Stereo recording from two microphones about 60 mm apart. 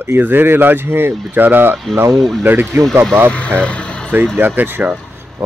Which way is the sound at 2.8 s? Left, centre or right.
Right.